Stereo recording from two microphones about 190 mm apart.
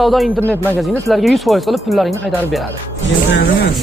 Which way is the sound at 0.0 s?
Centre (ahead or behind).